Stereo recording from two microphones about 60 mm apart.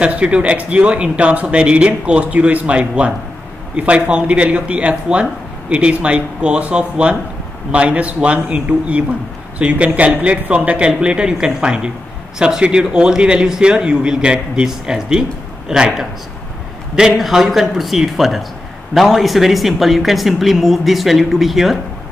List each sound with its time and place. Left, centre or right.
0.0 s a man's voice: centre
17.2 s speech: centre